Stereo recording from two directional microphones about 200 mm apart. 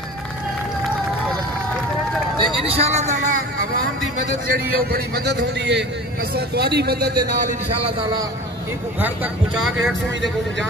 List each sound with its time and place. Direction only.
2.3 s speech: 25° right (ahead or behind)
4.5 s a man's voice: 50° right (ahead or behind)
7.8 s a man's voice: 20° right (ahead or behind)
9.0 s speech: 5° right (ahead or behind)